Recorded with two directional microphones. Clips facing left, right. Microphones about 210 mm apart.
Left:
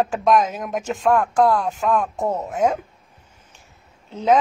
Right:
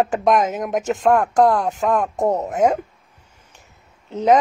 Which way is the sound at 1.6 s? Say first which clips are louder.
Right 1 dB; 20° right (ahead or behind).